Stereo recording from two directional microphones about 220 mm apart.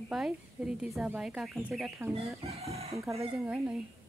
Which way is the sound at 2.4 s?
30° right (ahead or behind).